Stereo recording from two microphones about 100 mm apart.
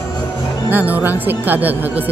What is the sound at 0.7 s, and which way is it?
A woman's voice, 15° right (ahead or behind).